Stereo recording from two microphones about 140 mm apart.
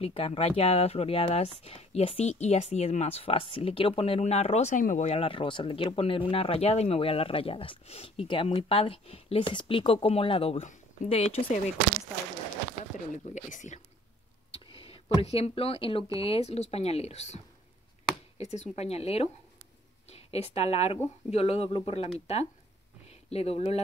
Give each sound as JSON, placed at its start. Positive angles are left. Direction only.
{"t": 0.0, "sound": "speech", "side_deg": 40}
{"t": 5.0, "sound": "speech", "side_deg": 45}
{"t": 13.1, "sound": "speech", "side_deg": 60}
{"t": 14.5, "sound": "speech", "side_deg": 40}
{"t": 18.4, "sound": "speech", "side_deg": 50}
{"t": 23.3, "sound": "speech", "side_deg": 45}